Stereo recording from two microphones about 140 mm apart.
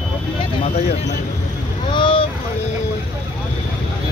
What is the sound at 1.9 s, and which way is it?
Boat, 40° left (ahead or behind).